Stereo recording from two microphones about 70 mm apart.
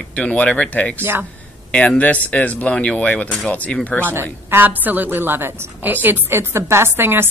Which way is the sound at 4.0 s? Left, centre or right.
Right.